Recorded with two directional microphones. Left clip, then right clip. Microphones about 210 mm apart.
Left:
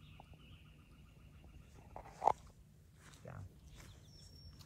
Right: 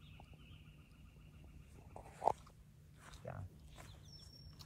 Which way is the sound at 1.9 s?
30° right (ahead or behind).